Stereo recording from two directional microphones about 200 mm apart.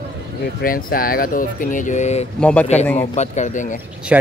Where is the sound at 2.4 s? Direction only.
5° left (ahead or behind).